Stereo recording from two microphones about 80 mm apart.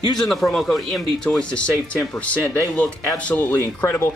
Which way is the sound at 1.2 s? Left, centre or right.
Centre.